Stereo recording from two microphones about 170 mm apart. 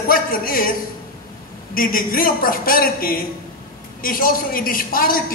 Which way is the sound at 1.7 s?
55° left (ahead or behind).